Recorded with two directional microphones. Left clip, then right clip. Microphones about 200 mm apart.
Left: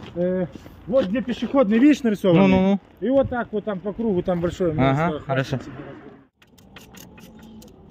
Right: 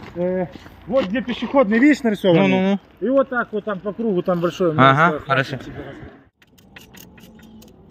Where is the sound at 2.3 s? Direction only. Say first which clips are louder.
Right 1 dB; 15° left (ahead or behind).